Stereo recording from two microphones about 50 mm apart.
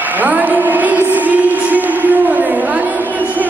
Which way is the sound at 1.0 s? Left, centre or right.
Right.